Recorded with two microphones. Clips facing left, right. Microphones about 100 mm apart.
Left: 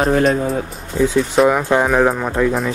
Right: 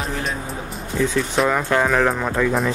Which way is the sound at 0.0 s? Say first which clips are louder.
Left 11 dB; 40° left (ahead or behind).